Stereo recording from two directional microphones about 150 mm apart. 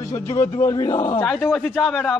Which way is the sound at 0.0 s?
20° left (ahead or behind).